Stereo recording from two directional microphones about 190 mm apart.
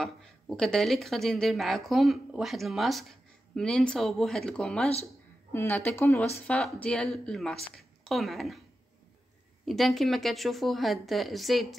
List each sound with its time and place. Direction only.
0.0 s speech: 5° left (ahead or behind)
9.7 s speech: centre (ahead or behind)